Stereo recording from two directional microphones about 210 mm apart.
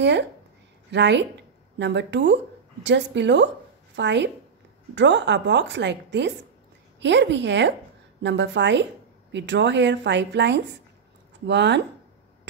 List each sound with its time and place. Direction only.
0.0 s a woman's voice: 55° right (ahead or behind)